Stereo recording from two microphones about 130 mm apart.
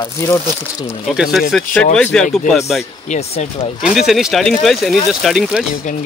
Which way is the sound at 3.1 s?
55° left (ahead or behind).